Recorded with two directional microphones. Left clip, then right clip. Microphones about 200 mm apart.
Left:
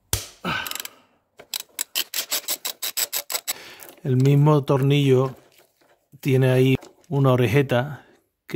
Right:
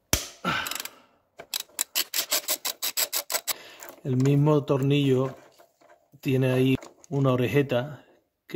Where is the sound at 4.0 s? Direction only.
45° left (ahead or behind).